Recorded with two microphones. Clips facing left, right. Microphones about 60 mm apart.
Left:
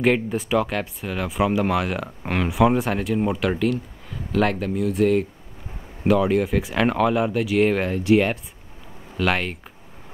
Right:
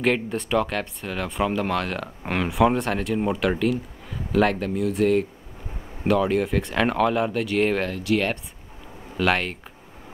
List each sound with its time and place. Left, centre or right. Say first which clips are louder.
0.0 s speech: left 3 dB; centre
7.9 s speech: left 5 dB; left
9.1 s speech: even; centre